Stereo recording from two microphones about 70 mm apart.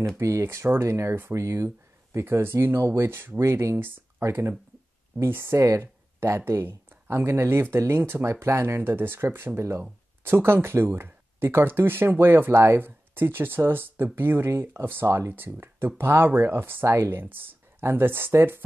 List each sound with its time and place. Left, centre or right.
0.2 s speech: right